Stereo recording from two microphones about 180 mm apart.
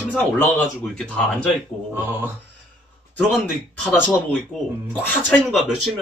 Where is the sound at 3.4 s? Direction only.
5° left (ahead or behind).